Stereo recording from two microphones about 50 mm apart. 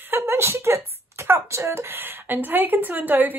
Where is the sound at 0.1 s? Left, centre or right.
Right.